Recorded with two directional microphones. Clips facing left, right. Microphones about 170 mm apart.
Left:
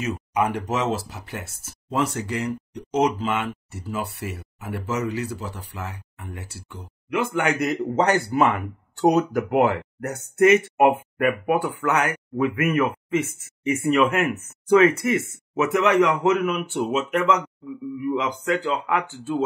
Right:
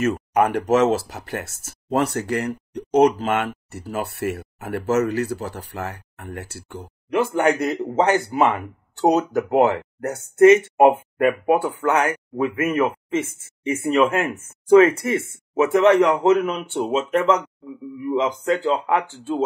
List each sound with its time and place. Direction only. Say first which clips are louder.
0.0 s speech: right 5 dB; 55° right (ahead or behind)
1.2 s speech: right 5 dB; 60° right (ahead or behind)
6.7 s speech: right 4 dB; 40° right (ahead or behind)
8.0 s speech: right 2 dB; 20° right (ahead or behind)